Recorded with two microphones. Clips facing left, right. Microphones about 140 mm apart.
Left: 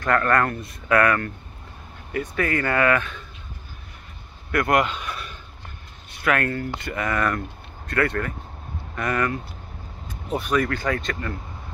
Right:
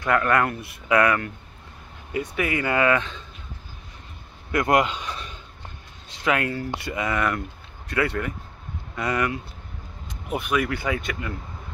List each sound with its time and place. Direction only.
0.0 s speech: 10° right (ahead or behind)
4.5 s speech: 20° right (ahead or behind)